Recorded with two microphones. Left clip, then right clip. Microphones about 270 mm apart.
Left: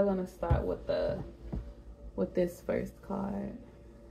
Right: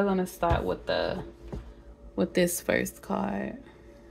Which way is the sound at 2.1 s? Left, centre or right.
Right.